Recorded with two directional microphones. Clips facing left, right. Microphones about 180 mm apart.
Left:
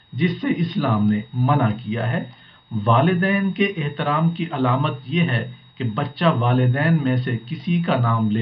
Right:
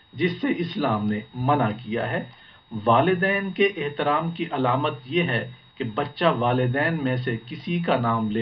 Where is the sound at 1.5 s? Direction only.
30° right (ahead or behind).